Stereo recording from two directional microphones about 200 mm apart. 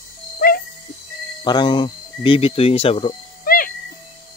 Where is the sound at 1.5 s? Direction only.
20° left (ahead or behind).